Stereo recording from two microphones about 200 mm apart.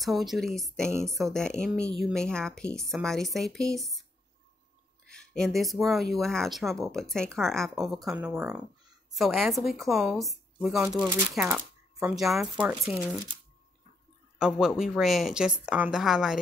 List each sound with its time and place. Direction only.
0.0 s a woman's voice: centre (ahead or behind)
5.0 s a woman's voice: 5° left (ahead or behind)
14.8 s a woman's voice: centre (ahead or behind)